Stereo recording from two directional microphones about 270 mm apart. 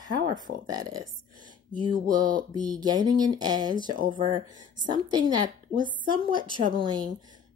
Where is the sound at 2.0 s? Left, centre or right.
Right.